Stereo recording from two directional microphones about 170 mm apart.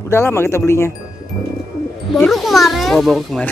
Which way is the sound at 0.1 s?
15° left (ahead or behind).